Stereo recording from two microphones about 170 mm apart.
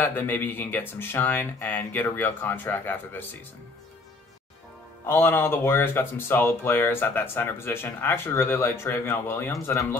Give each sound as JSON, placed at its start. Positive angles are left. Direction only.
{"t": 0.0, "sound": "speech", "side_deg": 10}
{"t": 5.0, "sound": "speech", "side_deg": 15}